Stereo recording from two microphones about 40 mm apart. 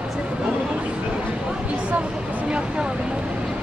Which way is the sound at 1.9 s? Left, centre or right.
Right.